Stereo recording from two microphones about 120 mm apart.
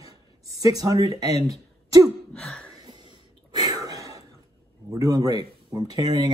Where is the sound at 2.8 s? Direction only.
40° right (ahead or behind).